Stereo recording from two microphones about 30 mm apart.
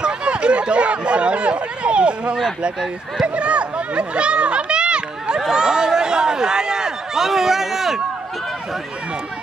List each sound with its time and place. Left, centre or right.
0.0 s a sound: right
3.3 s speech: right
5.5 s speech: right
7.2 s speech: centre